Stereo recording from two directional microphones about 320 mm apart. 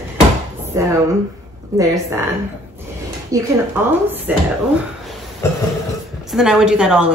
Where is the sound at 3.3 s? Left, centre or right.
Centre.